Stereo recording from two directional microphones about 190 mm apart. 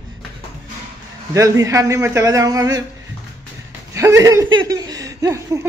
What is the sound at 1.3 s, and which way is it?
A man's voice, 15° right (ahead or behind).